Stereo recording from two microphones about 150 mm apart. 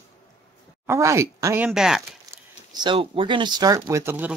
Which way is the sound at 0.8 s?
20° right (ahead or behind).